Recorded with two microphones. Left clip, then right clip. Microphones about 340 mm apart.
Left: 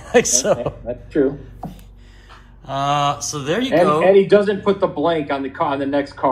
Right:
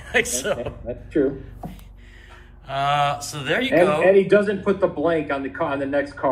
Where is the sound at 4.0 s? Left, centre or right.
Left.